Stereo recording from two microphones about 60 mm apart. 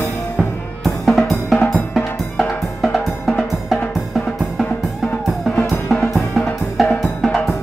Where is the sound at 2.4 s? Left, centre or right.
Centre.